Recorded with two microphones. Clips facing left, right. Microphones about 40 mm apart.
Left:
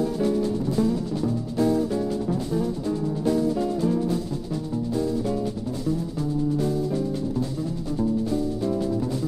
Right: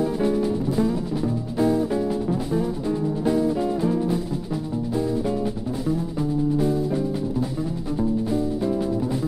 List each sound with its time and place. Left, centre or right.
0.0 s music: centre